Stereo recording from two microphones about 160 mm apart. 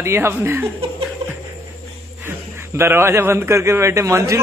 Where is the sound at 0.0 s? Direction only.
15° right (ahead or behind).